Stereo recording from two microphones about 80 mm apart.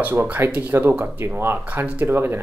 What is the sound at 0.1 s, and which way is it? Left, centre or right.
Speech, right.